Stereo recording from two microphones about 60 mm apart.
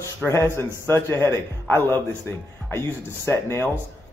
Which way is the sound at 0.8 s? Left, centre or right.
Left.